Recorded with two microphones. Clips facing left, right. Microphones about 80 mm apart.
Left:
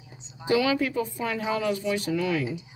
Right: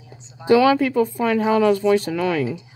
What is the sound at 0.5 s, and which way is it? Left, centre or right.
Speech, right.